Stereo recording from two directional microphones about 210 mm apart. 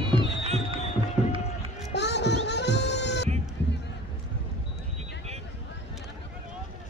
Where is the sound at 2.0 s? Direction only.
55° left (ahead or behind).